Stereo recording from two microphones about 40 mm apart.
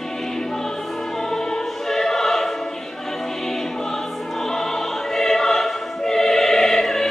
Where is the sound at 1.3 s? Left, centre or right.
Centre.